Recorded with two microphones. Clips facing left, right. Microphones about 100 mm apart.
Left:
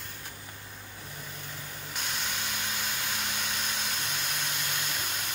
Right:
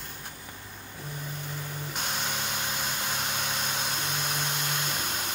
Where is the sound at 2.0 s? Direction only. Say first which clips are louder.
Right 2 dB; 35° right (ahead or behind).